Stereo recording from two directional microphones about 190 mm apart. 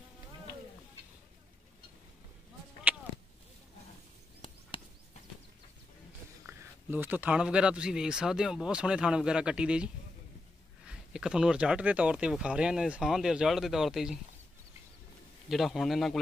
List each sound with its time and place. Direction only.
4.4 s a sound: 30° left (ahead or behind)
6.4 s speech: 10° right (ahead or behind)
10.9 s speech: 5° right (ahead or behind)
15.4 s speech: centre (ahead or behind)